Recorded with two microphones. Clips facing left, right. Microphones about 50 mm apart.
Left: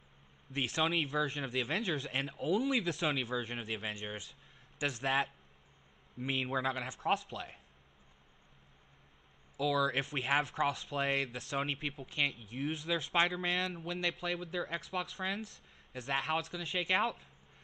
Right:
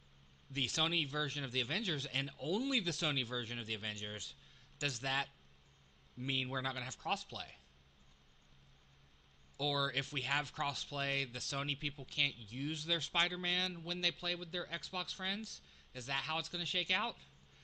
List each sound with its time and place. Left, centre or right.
0.5 s speech: left
0.9 s speech: centre
9.6 s speech: left